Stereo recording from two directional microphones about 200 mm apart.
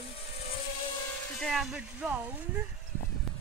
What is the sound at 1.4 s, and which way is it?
Speech, centre (ahead or behind).